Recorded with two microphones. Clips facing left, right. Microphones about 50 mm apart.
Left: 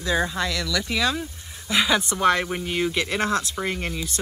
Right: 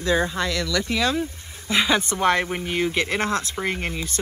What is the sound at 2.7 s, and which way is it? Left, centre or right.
Speech, right.